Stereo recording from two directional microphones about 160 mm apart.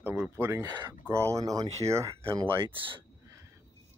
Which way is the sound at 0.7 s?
25° right (ahead or behind).